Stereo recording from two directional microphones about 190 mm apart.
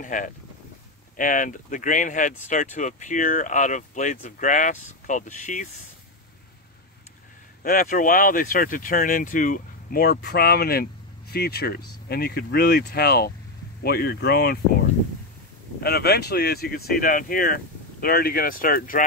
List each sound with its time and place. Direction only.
0.0 s speech: 45° left (ahead or behind)
7.6 s speech: 45° left (ahead or behind)
15.8 s speech: 55° left (ahead or behind)